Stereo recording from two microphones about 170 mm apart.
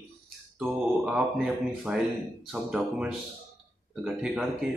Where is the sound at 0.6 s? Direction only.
5° right (ahead or behind).